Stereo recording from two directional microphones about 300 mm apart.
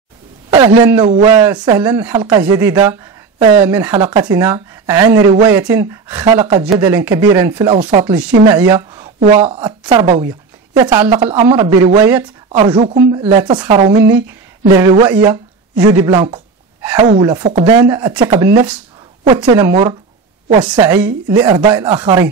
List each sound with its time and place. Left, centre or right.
0.5 s a man's voice: centre